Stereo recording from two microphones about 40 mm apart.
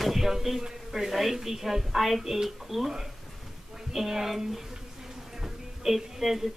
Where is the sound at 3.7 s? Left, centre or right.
Centre.